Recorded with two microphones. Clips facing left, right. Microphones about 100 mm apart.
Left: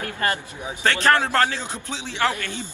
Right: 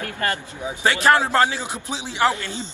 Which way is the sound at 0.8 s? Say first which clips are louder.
Right 2 dB; 10° right (ahead or behind).